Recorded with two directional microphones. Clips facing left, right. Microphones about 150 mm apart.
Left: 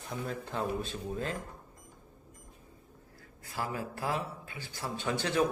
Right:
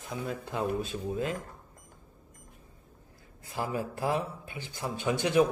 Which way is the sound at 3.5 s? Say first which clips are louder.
Right 3 dB; 20° right (ahead or behind).